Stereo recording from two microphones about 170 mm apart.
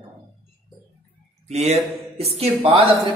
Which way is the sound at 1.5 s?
40° right (ahead or behind).